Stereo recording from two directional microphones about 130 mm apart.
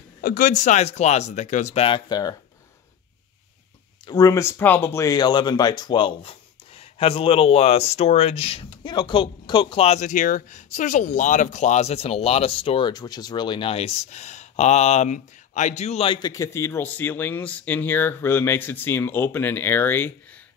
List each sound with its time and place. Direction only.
0.2 s speech: 90° left; by 1.9 s 65° left (ahead or behind)
1.9 s speech: 35° left (ahead or behind)
4.0 s speech: 30° left (ahead or behind); by 8.6 s 50° left (ahead or behind)
8.8 s speech: 35° left (ahead or behind)
9.8 s speech: 70° left (ahead or behind); by 12.9 s 45° left (ahead or behind)
12.9 s speech: 30° left (ahead or behind); by 16.1 s 60° left (ahead or behind)
16.1 s speech: 30° left (ahead or behind)